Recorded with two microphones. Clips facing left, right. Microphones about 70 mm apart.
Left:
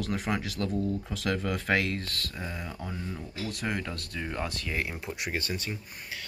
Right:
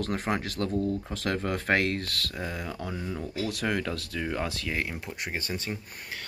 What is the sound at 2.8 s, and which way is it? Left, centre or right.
Speech, right.